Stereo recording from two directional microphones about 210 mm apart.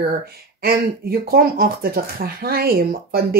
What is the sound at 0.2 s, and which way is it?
Speech, 45° right (ahead or behind).